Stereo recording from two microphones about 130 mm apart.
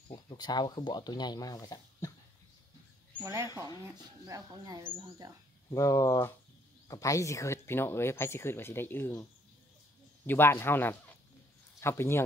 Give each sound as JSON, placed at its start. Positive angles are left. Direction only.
{"t": 0.1, "sound": "speech", "side_deg": 35}
{"t": 3.4, "sound": "speech", "side_deg": 30}
{"t": 4.3, "sound": "speech", "side_deg": -30}
{"t": 5.7, "sound": "speech", "side_deg": 25}